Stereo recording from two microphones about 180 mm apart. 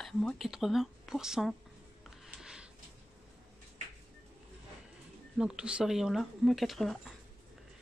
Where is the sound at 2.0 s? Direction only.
5° right (ahead or behind).